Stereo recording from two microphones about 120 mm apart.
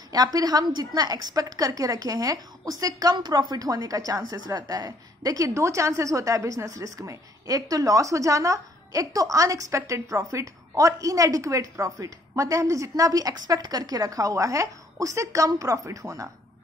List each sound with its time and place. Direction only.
0.1 s a woman's voice: 30° right (ahead or behind)